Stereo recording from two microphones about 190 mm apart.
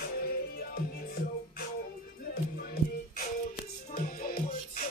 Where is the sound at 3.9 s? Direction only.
50° left (ahead or behind).